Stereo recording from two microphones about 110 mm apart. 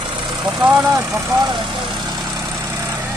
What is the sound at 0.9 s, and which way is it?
Speech, 25° right (ahead or behind).